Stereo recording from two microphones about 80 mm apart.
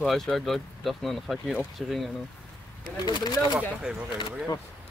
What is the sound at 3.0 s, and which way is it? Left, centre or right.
Speech, left.